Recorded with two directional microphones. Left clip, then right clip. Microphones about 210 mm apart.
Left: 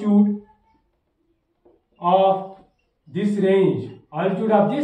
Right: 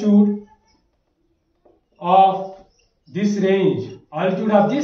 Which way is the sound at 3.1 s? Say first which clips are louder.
Even; centre (ahead or behind).